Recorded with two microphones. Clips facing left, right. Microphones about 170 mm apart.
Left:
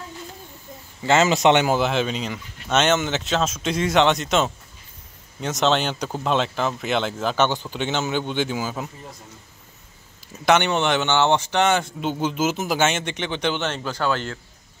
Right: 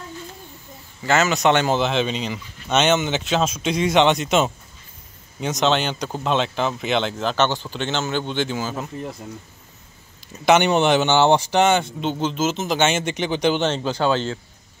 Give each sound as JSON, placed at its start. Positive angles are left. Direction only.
{"t": 1.0, "sound": "a man's voice", "side_deg": 25}
{"t": 1.7, "sound": "speech", "side_deg": 10}
{"t": 10.3, "sound": "speech", "side_deg": -5}
{"t": 11.1, "sound": "speech", "side_deg": -30}
{"t": 11.5, "sound": "speech", "side_deg": 0}
{"t": 13.2, "sound": "speech", "side_deg": -35}